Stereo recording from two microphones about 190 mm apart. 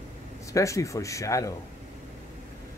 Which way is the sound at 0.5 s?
15° left (ahead or behind).